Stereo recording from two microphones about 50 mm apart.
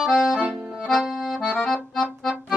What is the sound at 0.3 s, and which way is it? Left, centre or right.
Accordion, centre.